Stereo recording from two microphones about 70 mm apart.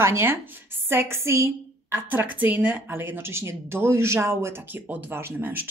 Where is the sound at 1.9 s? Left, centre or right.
Right.